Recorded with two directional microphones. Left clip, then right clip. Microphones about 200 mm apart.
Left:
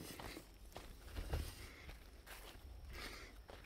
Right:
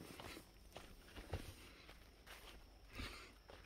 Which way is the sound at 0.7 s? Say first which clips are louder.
Left 2 dB; 45° left (ahead or behind).